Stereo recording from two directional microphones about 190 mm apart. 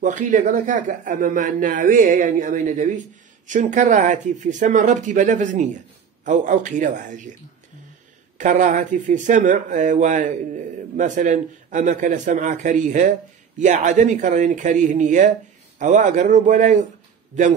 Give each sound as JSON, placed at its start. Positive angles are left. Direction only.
{"t": 0.0, "sound": "speech", "side_deg": -40}
{"t": 8.4, "sound": "speech", "side_deg": -40}